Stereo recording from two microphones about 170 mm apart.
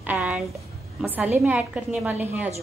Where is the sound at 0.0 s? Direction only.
10° right (ahead or behind).